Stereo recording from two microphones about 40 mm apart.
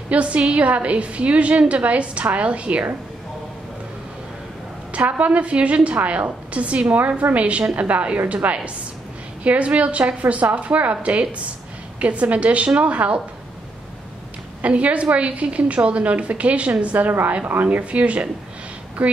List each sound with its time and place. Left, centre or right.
0.1 s a woman's voice: right
4.9 s a woman's voice: right
14.6 s a woman's voice: right